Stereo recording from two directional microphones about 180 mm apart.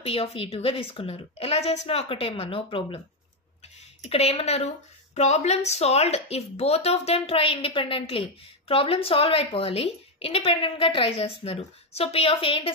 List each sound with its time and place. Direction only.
0.0 s a woman's voice: 35° left (ahead or behind)
4.0 s a woman's voice: 35° left (ahead or behind)